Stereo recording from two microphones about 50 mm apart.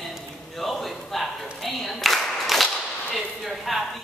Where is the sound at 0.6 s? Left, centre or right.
Centre.